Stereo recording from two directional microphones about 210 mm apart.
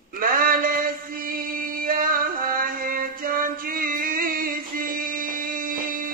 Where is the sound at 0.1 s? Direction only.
45° right (ahead or behind).